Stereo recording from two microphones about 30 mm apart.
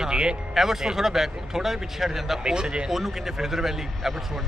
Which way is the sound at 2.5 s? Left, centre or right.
Right.